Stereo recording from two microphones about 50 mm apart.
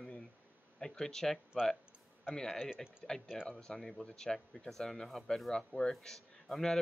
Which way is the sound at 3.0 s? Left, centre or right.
Centre.